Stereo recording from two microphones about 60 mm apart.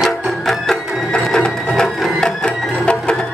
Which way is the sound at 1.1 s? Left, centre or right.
Centre.